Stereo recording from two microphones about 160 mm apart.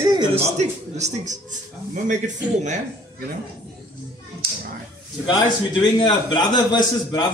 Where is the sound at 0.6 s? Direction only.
45° right (ahead or behind).